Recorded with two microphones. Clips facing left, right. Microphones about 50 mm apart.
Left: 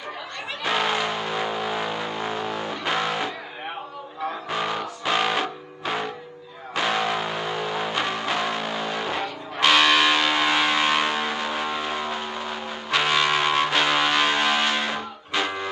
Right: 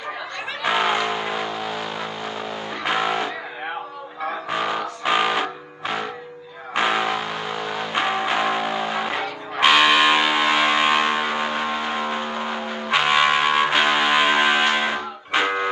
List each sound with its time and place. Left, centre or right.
0.7 s music: centre
1.4 s a sound: centre
2.8 s music: centre
4.5 s music: centre
7.2 s vehicle: centre
7.9 s music: right
15.3 s music: right